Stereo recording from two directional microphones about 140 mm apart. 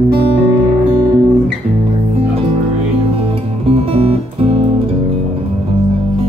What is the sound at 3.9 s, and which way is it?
Music, 45° right (ahead or behind).